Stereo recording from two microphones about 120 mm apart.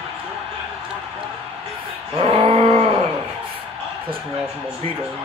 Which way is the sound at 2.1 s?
55° right (ahead or behind).